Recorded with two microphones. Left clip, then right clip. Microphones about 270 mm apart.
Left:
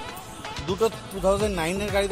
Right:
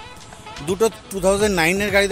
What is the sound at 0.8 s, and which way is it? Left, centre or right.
Music, right.